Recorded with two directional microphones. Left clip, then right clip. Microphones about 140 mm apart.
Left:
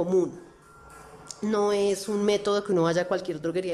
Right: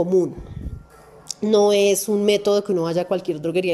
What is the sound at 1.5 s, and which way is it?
A woman's voice, 20° right (ahead or behind).